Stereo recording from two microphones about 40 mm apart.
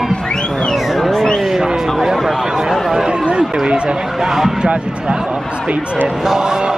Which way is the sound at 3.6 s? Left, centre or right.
Right.